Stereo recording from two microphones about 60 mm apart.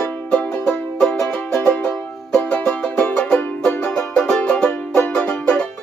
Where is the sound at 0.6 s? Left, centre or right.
Left.